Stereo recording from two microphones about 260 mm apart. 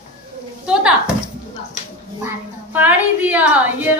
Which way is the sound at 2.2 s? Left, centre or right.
Centre.